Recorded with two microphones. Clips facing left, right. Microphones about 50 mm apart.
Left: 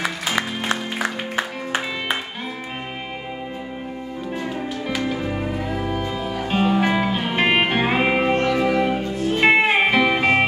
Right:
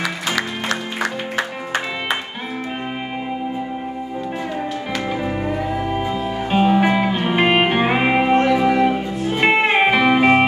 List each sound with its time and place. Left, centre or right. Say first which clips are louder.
0.0 s music: right 1 dB; left
5.0 s music: right 2 dB; centre
5.9 s music: right 4 dB; right
6.5 s music: right 4 dB; centre